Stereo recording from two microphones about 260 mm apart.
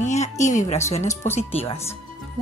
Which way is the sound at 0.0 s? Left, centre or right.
Left.